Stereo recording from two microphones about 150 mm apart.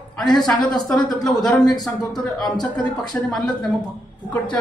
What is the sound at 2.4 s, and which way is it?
Speech, 25° left (ahead or behind).